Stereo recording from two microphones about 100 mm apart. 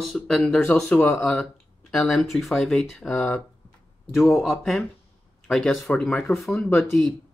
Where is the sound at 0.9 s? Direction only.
15° left (ahead or behind).